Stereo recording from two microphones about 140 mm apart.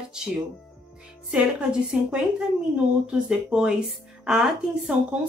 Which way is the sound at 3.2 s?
5° right (ahead or behind).